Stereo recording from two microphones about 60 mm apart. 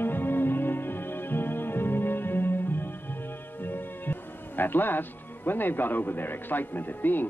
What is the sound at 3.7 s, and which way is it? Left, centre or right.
Speech, left.